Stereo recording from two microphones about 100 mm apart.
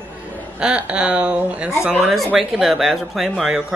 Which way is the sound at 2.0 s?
Centre (ahead or behind).